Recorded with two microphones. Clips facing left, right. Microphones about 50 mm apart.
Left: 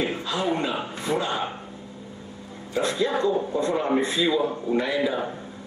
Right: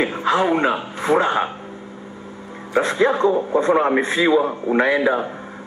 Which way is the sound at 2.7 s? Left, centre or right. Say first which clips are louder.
Right 7 dB; right.